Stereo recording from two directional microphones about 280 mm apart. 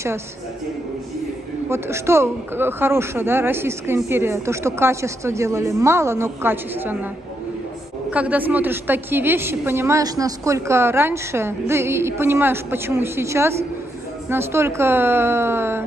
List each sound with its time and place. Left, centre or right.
1.7 s a woman's voice: centre
8.1 s a woman's voice: centre